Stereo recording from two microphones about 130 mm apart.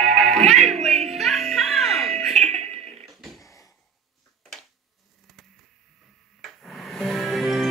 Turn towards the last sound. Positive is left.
turn(degrees=0)  # may be behind; listen again after turning